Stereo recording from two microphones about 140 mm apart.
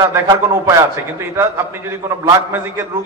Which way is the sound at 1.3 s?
15° right (ahead or behind).